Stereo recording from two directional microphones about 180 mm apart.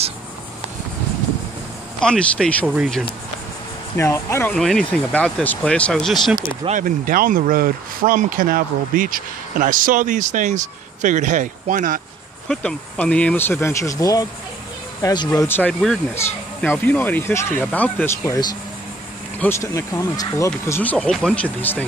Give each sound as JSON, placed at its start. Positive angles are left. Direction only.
{"t": 2.0, "sound": "speech", "side_deg": 5}
{"t": 2.7, "sound": "speech", "side_deg": -5}
{"t": 3.9, "sound": "speech", "side_deg": 15}
{"t": 4.6, "sound": "speech", "side_deg": 5}
{"t": 6.8, "sound": "speech", "side_deg": -50}
{"t": 12.4, "sound": "speech", "side_deg": 5}